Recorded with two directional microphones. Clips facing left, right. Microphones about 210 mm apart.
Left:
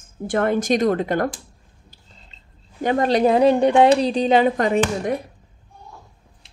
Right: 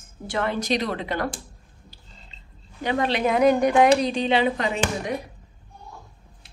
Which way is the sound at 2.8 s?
45° left (ahead or behind).